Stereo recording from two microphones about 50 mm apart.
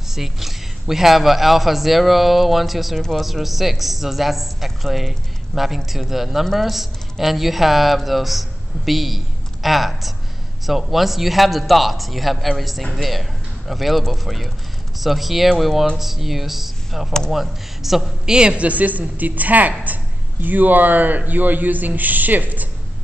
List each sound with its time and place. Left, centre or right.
0.1 s a woman's voice: centre
18.3 s speech: centre